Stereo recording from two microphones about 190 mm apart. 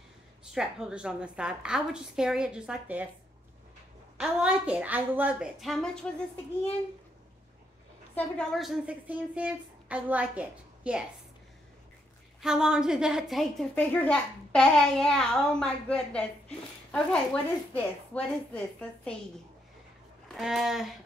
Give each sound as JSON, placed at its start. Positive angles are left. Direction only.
{"t": 0.5, "sound": "a woman's voice", "side_deg": 0}
{"t": 4.2, "sound": "speech", "side_deg": -5}
{"t": 8.1, "sound": "speech", "side_deg": 5}
{"t": 12.4, "sound": "a woman's voice", "side_deg": -5}
{"t": 20.2, "sound": "speech", "side_deg": 0}